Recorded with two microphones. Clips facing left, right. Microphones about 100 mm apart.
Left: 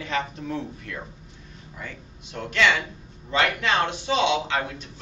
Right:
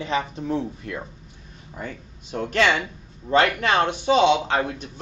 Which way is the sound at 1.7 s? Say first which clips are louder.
Right 5 dB; 40° right (ahead or behind).